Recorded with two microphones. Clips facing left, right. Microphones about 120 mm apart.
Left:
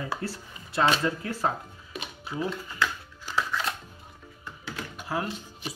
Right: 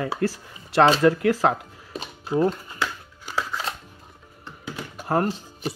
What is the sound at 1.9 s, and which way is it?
Music, 35° right (ahead or behind).